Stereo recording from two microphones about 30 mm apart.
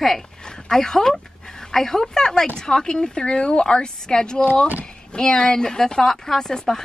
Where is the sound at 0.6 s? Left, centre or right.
Centre.